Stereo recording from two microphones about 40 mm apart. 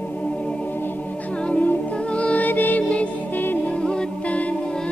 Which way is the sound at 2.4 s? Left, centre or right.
Left.